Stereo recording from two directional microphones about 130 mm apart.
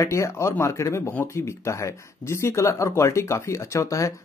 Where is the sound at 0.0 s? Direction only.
20° left (ahead or behind).